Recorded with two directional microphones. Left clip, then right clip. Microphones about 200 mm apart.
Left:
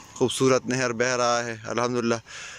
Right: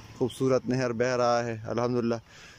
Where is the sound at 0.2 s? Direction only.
5° right (ahead or behind).